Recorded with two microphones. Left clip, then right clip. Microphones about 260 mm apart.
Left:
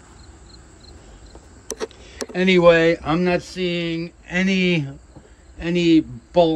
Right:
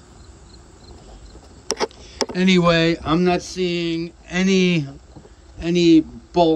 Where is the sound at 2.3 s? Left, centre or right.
Centre.